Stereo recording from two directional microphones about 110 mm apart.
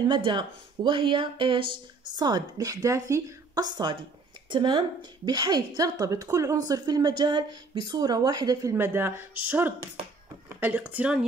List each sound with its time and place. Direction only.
0.0 s a woman's voice: 45° right (ahead or behind)
8.7 s speech: 20° right (ahead or behind)